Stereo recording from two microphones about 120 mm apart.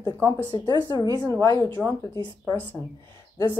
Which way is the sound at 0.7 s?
40° right (ahead or behind).